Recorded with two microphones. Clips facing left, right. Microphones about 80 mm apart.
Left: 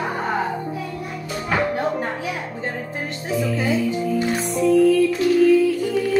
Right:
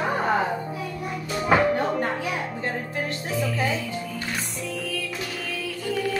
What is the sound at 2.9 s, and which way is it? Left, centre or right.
Music, left.